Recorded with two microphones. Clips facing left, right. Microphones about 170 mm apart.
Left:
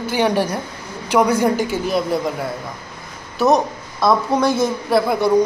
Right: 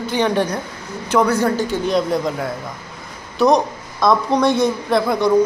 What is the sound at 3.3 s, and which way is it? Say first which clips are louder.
A woman's voice: right 1 dB; 5° left (ahead or behind).